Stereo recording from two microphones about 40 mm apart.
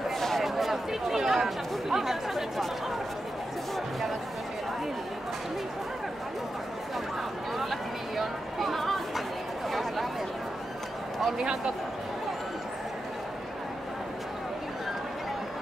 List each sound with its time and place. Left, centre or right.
0.4 s chatter: centre
7.5 s chatter: centre
9.7 s a sound: centre
11.3 s speech: centre